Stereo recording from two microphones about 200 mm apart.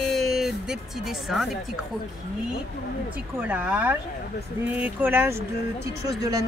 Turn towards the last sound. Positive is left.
turn(degrees=-15)  # may be behind; listen again after turning